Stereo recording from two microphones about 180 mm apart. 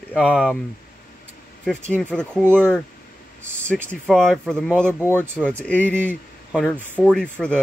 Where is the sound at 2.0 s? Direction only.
5° left (ahead or behind).